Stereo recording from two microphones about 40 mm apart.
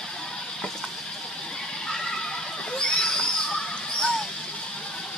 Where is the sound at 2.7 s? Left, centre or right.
Left.